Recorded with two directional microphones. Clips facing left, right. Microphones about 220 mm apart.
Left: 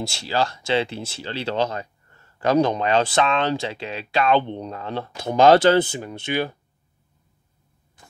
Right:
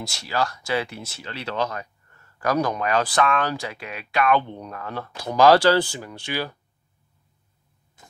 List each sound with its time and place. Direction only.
0.0 s speech: 30° left (ahead or behind)